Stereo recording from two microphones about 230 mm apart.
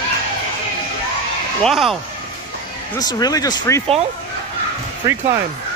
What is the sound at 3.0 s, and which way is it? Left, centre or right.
Speech, centre.